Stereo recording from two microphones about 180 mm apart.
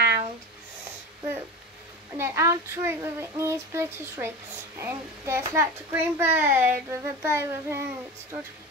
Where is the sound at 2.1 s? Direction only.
15° right (ahead or behind).